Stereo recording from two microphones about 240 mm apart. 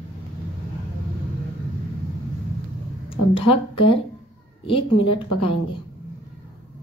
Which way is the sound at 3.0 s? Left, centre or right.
Left.